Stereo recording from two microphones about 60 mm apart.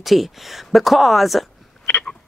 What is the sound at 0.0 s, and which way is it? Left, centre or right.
Speech, centre.